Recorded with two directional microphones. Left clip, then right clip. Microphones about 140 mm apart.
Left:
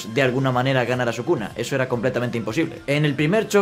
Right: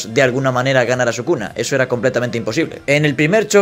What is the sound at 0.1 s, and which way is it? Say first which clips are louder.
Speech: right 6 dB; 20° right (ahead or behind).